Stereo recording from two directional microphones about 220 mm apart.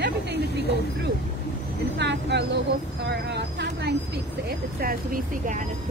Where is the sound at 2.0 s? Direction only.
50° right (ahead or behind).